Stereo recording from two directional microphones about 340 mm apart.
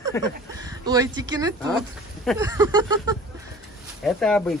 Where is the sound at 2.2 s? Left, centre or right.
Centre.